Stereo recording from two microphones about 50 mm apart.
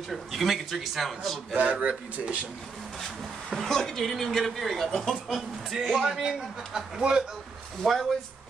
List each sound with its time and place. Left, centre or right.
0.1 s speech: centre
1.5 s speech: right
3.4 s speech: centre
7.8 s speech: centre